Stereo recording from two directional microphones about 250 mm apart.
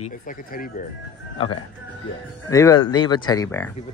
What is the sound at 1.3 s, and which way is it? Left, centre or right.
Speech, left.